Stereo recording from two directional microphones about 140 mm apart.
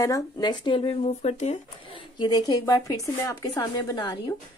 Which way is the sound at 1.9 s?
35° left (ahead or behind).